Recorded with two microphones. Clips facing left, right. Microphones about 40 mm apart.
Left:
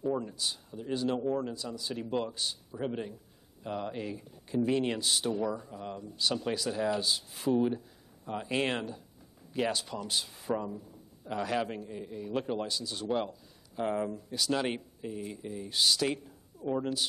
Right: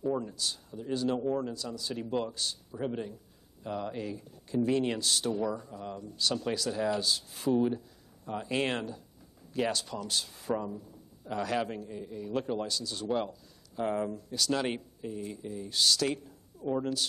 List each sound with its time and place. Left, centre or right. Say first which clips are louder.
0.0 s speech: even; centre
11.3 s a man's voice: even; centre